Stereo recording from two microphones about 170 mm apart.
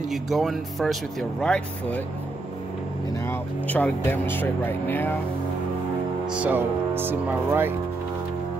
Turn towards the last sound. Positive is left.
turn(degrees=-10)  # may be behind; listen again after turning